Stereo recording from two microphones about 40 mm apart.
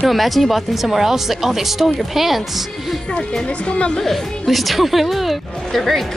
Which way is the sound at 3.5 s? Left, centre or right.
Left.